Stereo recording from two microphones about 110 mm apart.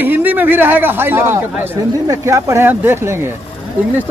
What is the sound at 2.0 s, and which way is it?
Speech, 30° right (ahead or behind).